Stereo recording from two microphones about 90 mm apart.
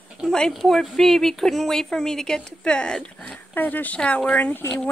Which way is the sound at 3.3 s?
20° left (ahead or behind).